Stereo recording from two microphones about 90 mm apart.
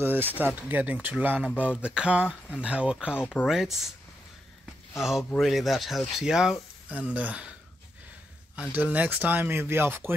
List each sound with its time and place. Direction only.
0.0 s speech: 20° right (ahead or behind)
1.6 s a sound: 10° right (ahead or behind)
3.4 s speech: 5° right (ahead or behind)
5.4 s speech: centre (ahead or behind)
8.7 s speech: 15° right (ahead or behind)